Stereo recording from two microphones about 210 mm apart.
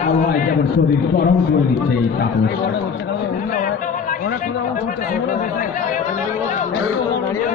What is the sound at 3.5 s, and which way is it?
Chatter, 40° left (ahead or behind).